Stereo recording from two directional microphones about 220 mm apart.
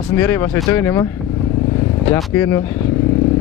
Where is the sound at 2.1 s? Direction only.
10° left (ahead or behind).